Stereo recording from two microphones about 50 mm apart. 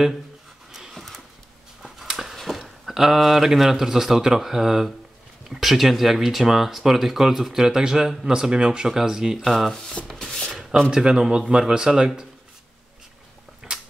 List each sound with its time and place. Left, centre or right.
0.7 s a sound: centre
1.8 s speech: centre
9.5 s speech: centre
10.0 s rub: centre
10.9 s speech: centre
13.7 s a sound: centre